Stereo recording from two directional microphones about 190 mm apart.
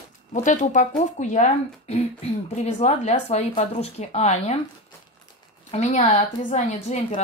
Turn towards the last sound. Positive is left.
turn(degrees=35)  # may be behind; listen again after turning